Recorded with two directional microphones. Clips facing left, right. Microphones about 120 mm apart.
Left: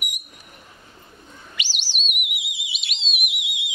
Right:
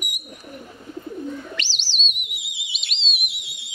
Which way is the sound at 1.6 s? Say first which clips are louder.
Right 1 dB; 10° left (ahead or behind).